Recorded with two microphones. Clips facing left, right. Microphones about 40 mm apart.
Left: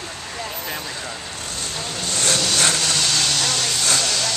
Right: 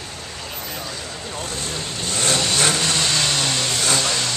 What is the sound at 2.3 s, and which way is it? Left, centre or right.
Vehicle, right.